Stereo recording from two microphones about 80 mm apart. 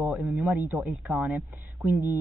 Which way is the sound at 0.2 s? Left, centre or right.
Centre.